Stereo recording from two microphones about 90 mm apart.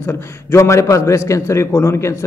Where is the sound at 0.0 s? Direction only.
30° left (ahead or behind).